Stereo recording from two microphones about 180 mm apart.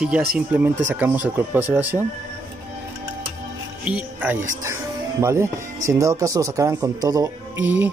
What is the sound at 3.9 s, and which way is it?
Speech, 5° right (ahead or behind).